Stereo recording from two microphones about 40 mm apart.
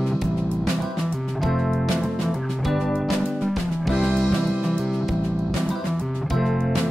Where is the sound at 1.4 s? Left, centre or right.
Centre.